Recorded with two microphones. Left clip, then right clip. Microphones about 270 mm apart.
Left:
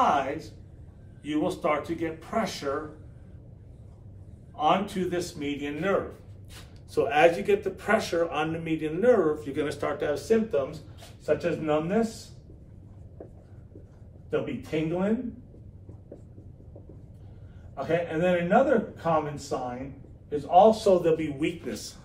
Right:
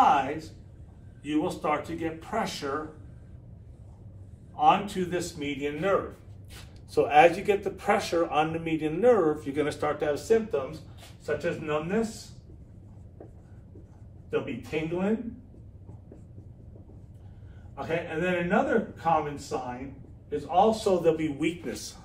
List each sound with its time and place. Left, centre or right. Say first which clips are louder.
0.0 s a sound: right 2 dB; centre
1.2 s a man's voice: left 1 dB; centre
4.6 s a man's voice: right 2 dB; centre
14.3 s a man's voice: left 1 dB; centre
17.8 s a man's voice: left 4 dB; centre